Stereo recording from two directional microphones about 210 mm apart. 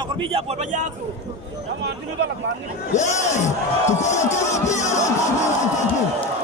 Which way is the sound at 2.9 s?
35° left (ahead or behind).